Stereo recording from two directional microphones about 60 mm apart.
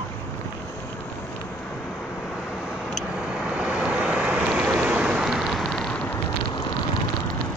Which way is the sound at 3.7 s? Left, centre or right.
Centre.